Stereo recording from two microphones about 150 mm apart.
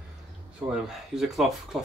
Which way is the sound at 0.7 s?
Centre (ahead or behind).